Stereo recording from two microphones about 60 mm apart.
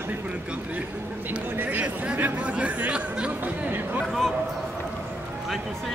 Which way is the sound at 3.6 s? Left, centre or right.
Right.